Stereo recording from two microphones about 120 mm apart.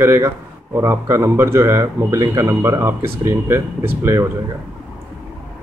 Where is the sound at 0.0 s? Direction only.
20° right (ahead or behind).